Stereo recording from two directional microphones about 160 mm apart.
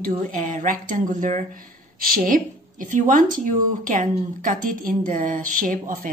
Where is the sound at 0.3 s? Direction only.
55° right (ahead or behind).